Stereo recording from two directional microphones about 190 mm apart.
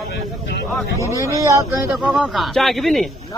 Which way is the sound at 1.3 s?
15° right (ahead or behind).